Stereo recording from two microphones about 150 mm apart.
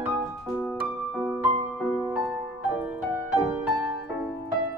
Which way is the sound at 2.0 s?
20° right (ahead or behind).